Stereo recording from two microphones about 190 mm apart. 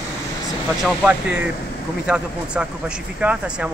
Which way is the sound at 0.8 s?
Centre (ahead or behind).